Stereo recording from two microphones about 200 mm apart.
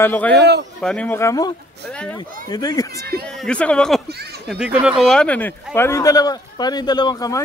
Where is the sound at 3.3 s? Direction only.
5° left (ahead or behind).